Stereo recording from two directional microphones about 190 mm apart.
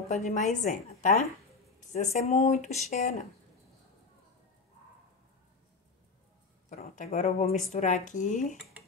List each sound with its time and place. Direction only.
0.1 s speech: 35° left (ahead or behind)
6.7 s speech: 40° left (ahead or behind)